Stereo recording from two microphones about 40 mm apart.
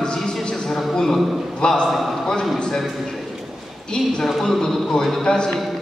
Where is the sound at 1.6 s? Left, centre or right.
Left.